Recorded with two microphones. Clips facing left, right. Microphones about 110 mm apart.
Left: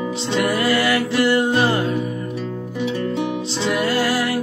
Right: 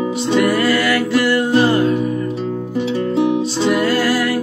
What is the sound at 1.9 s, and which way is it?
Music, 20° right (ahead or behind).